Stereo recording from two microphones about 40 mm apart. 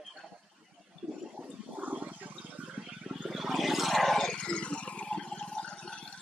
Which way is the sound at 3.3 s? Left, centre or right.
Centre.